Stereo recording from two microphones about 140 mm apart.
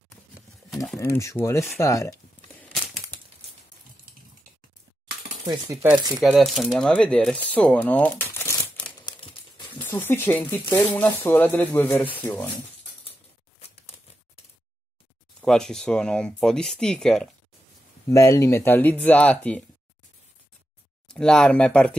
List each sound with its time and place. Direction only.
0.9 s speech: 20° left (ahead or behind)
5.9 s speech: 30° right (ahead or behind)
6.2 s speech: centre (ahead or behind)
8.8 s crumpling: 35° left (ahead or behind)
10.0 s speech: 15° left (ahead or behind)
13.6 s a sound: 45° left (ahead or behind)
15.4 s speech: 5° left (ahead or behind)
18.0 s speech: 25° left (ahead or behind)
21.1 s speech: 5° left (ahead or behind)